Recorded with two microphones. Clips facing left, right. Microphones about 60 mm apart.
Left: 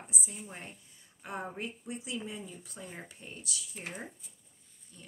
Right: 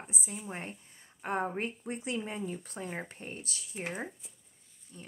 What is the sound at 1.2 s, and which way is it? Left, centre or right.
Speech, right.